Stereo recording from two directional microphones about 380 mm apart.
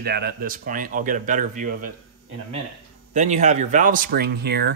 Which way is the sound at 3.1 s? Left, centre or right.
Centre.